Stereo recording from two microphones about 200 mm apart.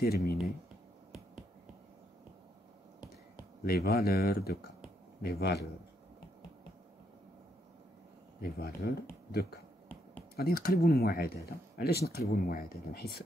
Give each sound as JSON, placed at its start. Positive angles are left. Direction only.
{"t": 0.0, "sound": "speech", "side_deg": 50}
{"t": 3.6, "sound": "speech", "side_deg": 50}
{"t": 8.4, "sound": "speech", "side_deg": 50}
{"t": 10.3, "sound": "speech", "side_deg": 50}